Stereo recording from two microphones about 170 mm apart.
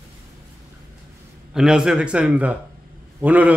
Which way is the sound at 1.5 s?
5° right (ahead or behind).